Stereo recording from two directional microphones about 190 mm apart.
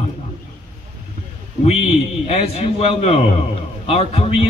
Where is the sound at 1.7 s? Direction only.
35° left (ahead or behind).